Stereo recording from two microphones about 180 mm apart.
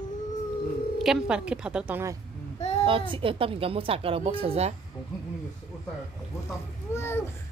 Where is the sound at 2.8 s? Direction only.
30° right (ahead or behind).